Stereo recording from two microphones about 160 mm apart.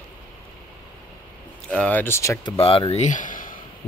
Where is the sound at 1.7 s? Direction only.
10° left (ahead or behind).